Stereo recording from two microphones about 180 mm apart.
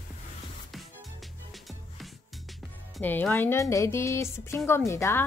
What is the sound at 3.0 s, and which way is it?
Speech, 10° left (ahead or behind).